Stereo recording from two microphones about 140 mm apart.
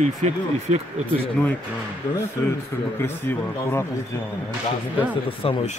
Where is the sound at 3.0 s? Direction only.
15° left (ahead or behind).